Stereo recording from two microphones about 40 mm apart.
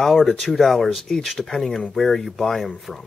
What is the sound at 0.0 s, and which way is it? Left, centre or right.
Speech, centre.